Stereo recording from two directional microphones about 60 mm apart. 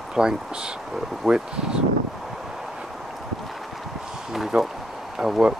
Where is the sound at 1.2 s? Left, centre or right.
Centre.